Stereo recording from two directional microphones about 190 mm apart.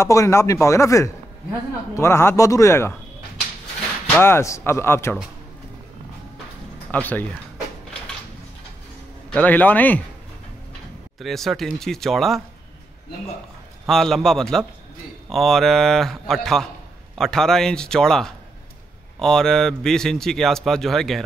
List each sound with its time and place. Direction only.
0.0 s speech: 15° left (ahead or behind)
4.1 s speech: 10° left (ahead or behind)
6.9 s speech: 10° left (ahead or behind)
9.3 s speech: 10° left (ahead or behind)
11.1 s a man's voice: centre (ahead or behind)
13.8 s a man's voice: centre (ahead or behind)